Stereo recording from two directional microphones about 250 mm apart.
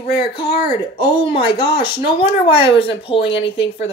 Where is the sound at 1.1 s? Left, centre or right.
Left.